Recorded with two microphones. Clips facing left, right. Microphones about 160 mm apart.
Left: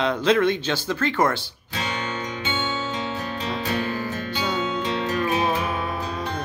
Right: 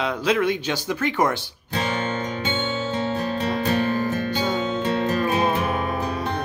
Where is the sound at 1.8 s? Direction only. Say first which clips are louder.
Right 4 dB; 50° right (ahead or behind).